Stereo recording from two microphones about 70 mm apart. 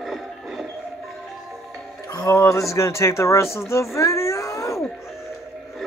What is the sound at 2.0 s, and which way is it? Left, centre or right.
Speech, left.